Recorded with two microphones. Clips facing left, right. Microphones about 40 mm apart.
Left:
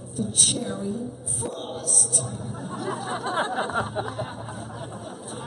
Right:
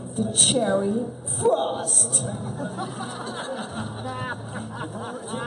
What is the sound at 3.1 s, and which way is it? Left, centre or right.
Music, left.